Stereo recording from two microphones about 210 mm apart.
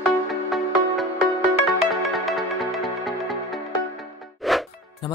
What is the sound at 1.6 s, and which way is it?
Music, centre (ahead or behind).